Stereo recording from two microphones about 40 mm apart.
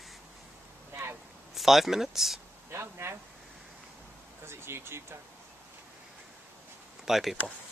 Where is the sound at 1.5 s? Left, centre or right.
Centre.